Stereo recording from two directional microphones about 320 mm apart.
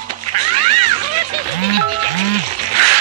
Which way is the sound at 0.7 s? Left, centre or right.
Right.